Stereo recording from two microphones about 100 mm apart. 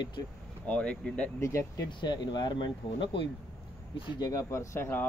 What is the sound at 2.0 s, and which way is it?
Speech, 45° left (ahead or behind).